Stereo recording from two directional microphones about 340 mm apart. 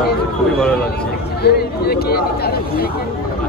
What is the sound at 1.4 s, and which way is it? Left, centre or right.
Speech, left.